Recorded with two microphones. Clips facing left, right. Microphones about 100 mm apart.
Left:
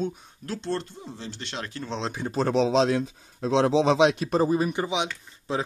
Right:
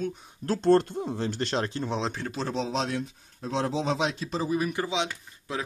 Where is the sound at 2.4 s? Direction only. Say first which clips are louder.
Left 9 dB; 85° left; by 4.4 s 70° left (ahead or behind).